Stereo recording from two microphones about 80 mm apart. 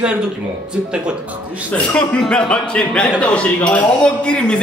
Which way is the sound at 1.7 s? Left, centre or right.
Centre.